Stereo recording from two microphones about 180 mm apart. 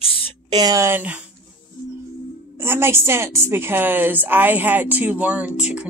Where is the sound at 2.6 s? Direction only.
15° right (ahead or behind).